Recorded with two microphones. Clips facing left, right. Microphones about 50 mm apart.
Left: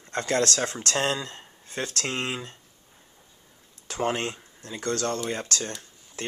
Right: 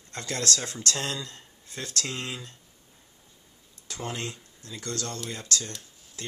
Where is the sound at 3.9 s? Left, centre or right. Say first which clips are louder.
Left 7 dB; left.